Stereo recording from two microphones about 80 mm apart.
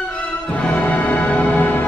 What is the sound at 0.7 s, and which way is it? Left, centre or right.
Music, left.